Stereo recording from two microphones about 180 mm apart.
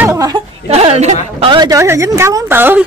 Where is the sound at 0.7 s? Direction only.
35° right (ahead or behind).